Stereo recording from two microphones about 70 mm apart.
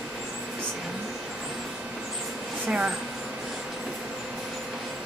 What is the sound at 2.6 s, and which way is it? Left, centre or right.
Speech, centre.